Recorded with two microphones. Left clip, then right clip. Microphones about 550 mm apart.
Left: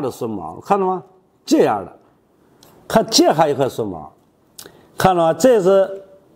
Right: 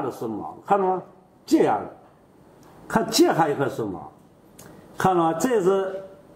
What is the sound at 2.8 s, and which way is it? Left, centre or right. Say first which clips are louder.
Speech: left 6 dB; left.